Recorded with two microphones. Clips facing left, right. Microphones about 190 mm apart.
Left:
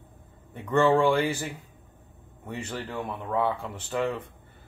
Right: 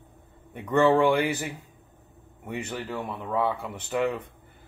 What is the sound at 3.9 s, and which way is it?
Speech, 15° right (ahead or behind).